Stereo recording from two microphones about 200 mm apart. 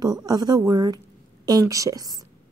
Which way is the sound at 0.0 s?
20° right (ahead or behind).